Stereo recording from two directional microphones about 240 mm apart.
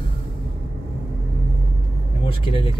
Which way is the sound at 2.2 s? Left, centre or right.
Left.